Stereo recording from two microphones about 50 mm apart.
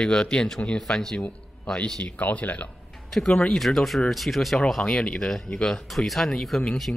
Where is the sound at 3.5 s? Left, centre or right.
Centre.